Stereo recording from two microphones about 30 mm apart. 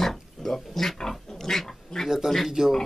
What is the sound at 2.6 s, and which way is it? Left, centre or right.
Speech, right.